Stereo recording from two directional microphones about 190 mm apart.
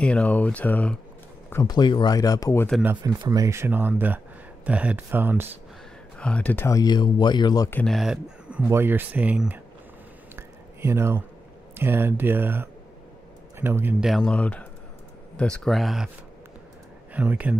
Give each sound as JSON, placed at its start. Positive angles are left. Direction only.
{"t": 0.0, "sound": "speech", "side_deg": 5}
{"t": 1.5, "sound": "speech", "side_deg": 20}
{"t": 3.0, "sound": "speech", "side_deg": -20}
{"t": 6.1, "sound": "speech", "side_deg": 5}
{"t": 7.8, "sound": "speech", "side_deg": 0}
{"t": 10.3, "sound": "a sound", "side_deg": -15}
{"t": 11.7, "sound": "speech", "side_deg": -10}
{"t": 14.1, "sound": "speech", "side_deg": 5}
{"t": 17.1, "sound": "speech", "side_deg": -10}